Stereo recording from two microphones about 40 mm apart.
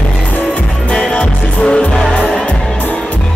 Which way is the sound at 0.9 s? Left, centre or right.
Left.